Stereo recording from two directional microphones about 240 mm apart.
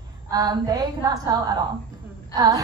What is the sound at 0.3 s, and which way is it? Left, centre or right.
A woman's voice, centre.